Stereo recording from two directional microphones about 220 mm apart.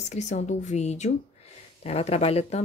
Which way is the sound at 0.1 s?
30° left (ahead or behind).